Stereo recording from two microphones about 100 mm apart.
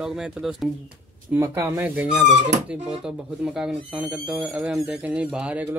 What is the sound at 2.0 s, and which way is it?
Speech, 10° right (ahead or behind).